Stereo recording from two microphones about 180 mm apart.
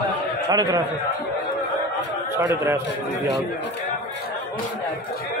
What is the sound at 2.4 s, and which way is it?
Speech, 15° right (ahead or behind).